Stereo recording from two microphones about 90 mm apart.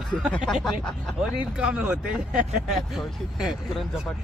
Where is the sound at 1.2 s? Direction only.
10° right (ahead or behind).